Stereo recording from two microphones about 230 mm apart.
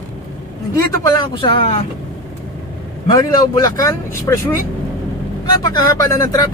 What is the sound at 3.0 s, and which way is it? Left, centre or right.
Speech, centre.